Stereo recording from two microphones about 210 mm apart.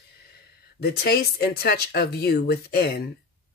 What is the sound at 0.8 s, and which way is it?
Speech, 50° left (ahead or behind).